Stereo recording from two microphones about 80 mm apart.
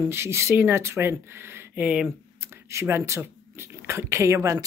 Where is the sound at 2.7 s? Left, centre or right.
Right.